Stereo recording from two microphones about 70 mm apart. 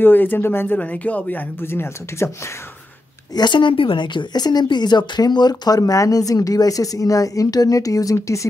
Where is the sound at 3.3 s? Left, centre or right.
Left.